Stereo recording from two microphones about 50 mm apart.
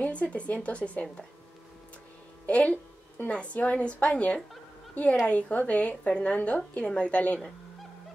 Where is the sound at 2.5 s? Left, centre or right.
Left.